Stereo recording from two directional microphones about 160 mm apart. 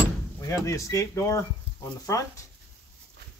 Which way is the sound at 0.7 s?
20° left (ahead or behind).